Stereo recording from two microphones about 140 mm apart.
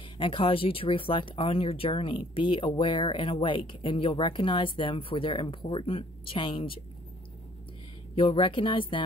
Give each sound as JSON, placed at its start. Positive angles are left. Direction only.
{"t": 0.2, "sound": "speech", "side_deg": 40}
{"t": 8.2, "sound": "speech", "side_deg": 40}